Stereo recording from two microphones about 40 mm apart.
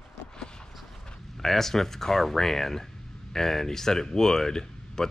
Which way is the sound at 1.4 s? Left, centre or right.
Centre.